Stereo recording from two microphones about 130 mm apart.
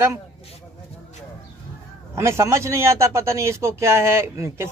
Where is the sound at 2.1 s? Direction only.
20° right (ahead or behind).